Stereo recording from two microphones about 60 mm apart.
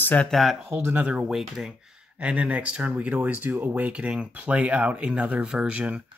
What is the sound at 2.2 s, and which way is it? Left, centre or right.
Speech, centre.